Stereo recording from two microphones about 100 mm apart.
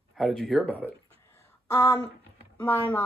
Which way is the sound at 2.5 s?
20° left (ahead or behind).